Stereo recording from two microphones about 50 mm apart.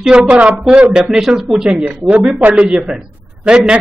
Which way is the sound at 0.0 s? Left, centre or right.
Centre.